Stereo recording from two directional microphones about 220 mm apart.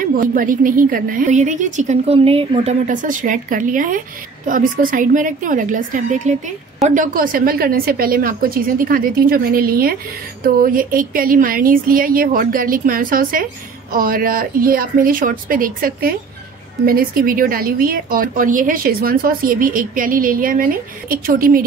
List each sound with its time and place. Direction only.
0.0 s a woman's voice: 40° right (ahead or behind)